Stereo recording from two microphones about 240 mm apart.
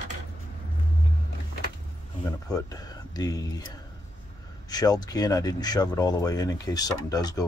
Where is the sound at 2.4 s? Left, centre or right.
Centre.